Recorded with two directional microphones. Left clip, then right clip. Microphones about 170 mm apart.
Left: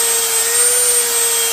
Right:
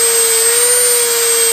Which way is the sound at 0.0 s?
15° right (ahead or behind).